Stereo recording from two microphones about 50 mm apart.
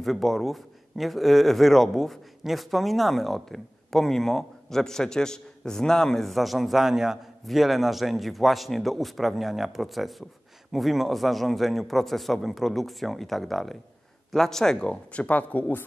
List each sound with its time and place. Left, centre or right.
0.0 s a man's voice: centre
14.9 s speech: left